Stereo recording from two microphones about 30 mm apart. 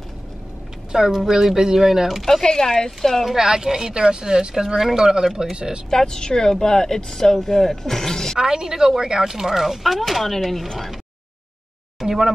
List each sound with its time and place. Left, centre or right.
0.9 s speech: centre
2.4 s speech: left
3.0 s speech: centre
3.3 s speech: centre
5.9 s speech: centre
8.4 s speech: right; by 10.7 s centre
12.0 s speech: centre